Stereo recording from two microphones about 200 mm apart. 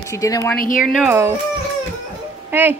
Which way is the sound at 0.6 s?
40° left (ahead or behind).